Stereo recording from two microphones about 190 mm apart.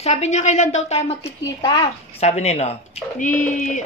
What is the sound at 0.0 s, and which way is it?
Speech, 35° left (ahead or behind).